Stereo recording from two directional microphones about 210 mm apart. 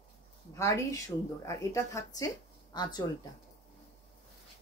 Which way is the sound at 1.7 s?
15° left (ahead or behind).